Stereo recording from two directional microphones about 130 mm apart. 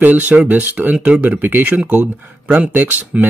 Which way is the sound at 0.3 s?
10° right (ahead or behind).